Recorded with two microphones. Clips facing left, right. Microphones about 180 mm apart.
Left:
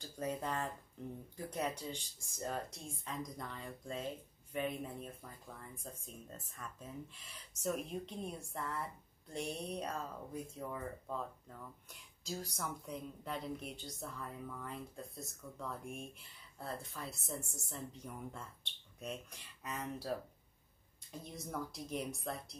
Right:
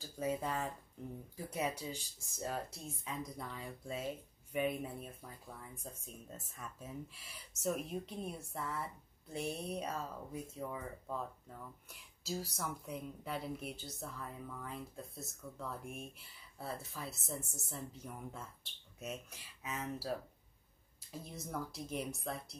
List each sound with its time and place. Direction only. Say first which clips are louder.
0.0 s speech: right 2 dB; 5° right (ahead or behind)